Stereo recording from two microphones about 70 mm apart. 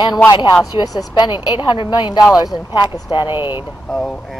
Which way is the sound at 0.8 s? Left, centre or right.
Left.